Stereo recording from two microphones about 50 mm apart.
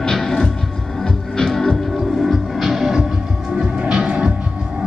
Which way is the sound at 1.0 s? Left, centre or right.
Centre.